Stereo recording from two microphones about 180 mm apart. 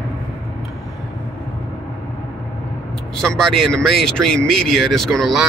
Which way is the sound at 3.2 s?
5° left (ahead or behind).